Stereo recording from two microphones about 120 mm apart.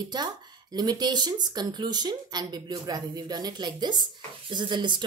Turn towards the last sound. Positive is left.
turn(degrees=-40)  # may be behind; listen again after turning